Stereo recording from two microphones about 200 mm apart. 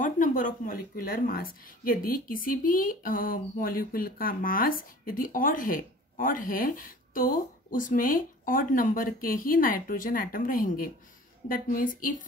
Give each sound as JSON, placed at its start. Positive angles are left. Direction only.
{"t": 0.0, "sound": "a woman's voice", "side_deg": 40}